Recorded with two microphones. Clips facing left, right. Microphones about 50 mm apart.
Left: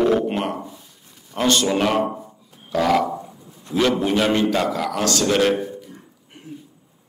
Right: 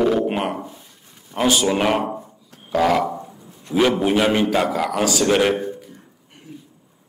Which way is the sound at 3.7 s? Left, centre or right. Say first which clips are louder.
Right 2 dB; centre.